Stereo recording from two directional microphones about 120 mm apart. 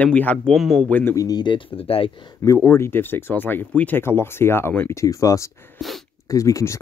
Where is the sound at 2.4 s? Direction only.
25° left (ahead or behind).